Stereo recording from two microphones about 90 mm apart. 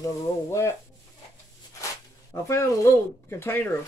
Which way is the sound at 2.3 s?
30° left (ahead or behind).